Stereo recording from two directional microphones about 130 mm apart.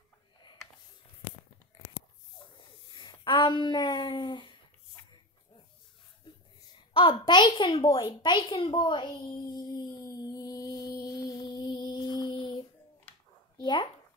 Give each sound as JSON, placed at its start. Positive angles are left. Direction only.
{"t": 2.9, "sound": "speech", "side_deg": 35}
{"t": 6.9, "sound": "a woman's voice", "side_deg": 45}
{"t": 9.7, "sound": "mantra", "side_deg": 30}
{"t": 13.6, "sound": "a sound", "side_deg": 40}